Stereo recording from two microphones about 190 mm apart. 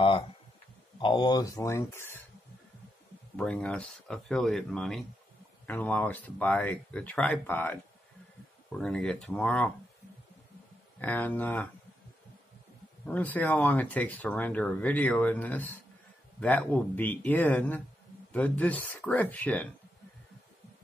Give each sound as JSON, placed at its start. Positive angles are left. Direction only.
{"t": 0.9, "sound": "speech", "side_deg": 25}
{"t": 3.3, "sound": "speech", "side_deg": 5}
{"t": 11.0, "sound": "speech", "side_deg": 10}
{"t": 13.0, "sound": "speech", "side_deg": 10}